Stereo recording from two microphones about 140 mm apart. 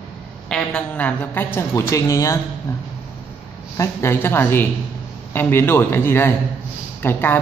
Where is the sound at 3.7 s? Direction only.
20° left (ahead or behind).